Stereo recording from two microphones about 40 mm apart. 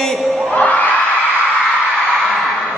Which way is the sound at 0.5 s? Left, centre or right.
Left.